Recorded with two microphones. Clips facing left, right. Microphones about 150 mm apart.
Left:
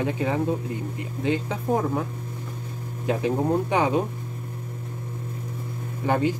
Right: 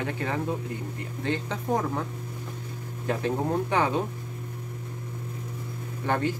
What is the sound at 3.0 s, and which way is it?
Speech, 15° left (ahead or behind).